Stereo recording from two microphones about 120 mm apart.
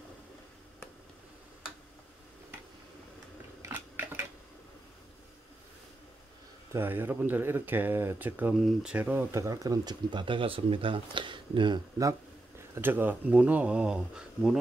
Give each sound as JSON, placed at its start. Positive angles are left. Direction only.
{"t": 3.6, "sound": "a sound", "side_deg": -15}
{"t": 6.7, "sound": "speech", "side_deg": -20}
{"t": 8.5, "sound": "speech", "side_deg": 0}
{"t": 8.9, "sound": "speech", "side_deg": -15}
{"t": 9.3, "sound": "speech", "side_deg": -25}
{"t": 12.7, "sound": "speech", "side_deg": -15}